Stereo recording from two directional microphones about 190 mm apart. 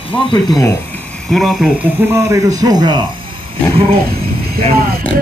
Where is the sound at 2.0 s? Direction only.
15° right (ahead or behind).